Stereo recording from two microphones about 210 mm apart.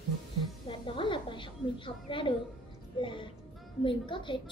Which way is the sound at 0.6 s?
25° left (ahead or behind).